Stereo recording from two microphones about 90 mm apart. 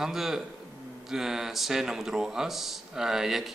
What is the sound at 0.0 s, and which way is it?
A man's voice, 5° right (ahead or behind).